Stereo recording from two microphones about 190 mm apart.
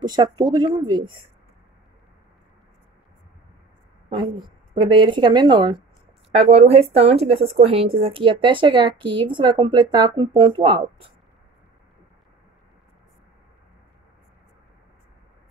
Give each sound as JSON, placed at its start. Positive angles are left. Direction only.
{"t": 0.0, "sound": "speech", "side_deg": -20}
{"t": 4.1, "sound": "speech", "side_deg": -25}